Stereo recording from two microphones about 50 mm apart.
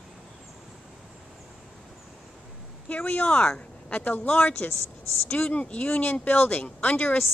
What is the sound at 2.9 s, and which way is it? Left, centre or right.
A woman's voice, left.